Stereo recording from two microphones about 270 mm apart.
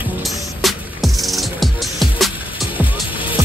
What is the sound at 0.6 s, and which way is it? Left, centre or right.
Music, centre.